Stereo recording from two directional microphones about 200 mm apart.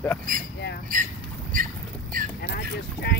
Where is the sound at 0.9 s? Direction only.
40° right (ahead or behind).